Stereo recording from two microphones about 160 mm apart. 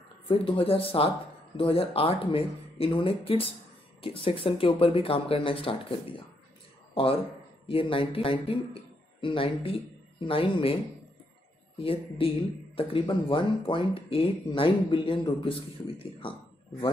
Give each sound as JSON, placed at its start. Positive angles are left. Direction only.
{"t": 0.3, "sound": "speech", "side_deg": 35}
{"t": 6.9, "sound": "a sound", "side_deg": 35}
{"t": 7.6, "sound": "speech", "side_deg": 35}
{"t": 11.8, "sound": "speech", "side_deg": 35}